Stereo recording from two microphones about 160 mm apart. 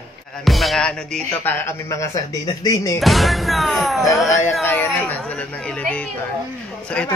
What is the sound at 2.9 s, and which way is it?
Speech, centre (ahead or behind).